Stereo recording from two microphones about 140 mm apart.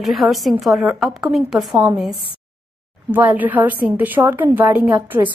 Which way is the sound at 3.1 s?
10° right (ahead or behind).